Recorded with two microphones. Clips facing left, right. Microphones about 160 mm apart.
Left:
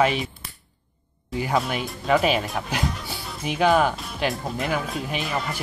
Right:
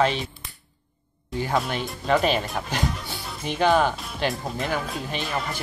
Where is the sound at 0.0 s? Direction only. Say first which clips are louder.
Left 1 dB; 10° left (ahead or behind).